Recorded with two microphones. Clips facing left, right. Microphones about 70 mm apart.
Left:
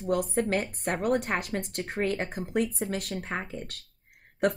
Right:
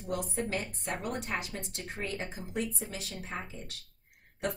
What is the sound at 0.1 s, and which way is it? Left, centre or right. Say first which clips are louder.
A woman's voice: left 7 dB; left.